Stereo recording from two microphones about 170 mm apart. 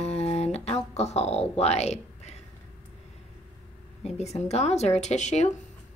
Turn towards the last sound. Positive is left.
turn(degrees=45)  # may be behind; listen again after turning